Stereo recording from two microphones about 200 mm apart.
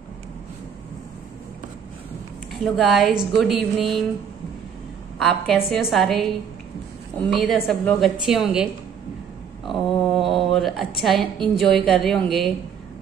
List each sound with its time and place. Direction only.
2.6 s a woman's voice: centre (ahead or behind)
5.7 s a woman's voice: centre (ahead or behind)
9.7 s speech: centre (ahead or behind)